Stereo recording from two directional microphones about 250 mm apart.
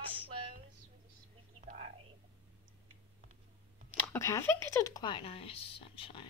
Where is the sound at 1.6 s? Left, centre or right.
Right.